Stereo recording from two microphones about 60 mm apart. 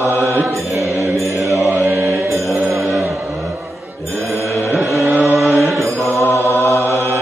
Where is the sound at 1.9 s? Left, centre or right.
Right.